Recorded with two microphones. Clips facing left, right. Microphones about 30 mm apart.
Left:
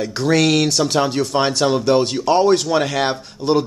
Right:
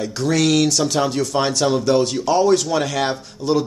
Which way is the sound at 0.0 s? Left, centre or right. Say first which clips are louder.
Left 2 dB; left.